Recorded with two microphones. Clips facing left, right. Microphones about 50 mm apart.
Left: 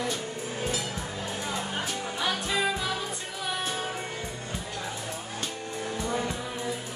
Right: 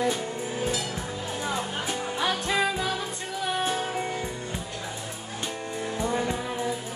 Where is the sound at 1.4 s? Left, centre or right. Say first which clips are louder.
Right 3 dB; centre.